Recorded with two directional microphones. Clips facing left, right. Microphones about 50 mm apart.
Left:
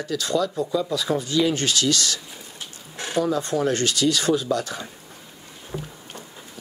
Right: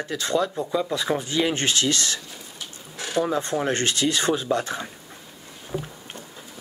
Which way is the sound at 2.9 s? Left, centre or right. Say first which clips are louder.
Left 1 dB; left.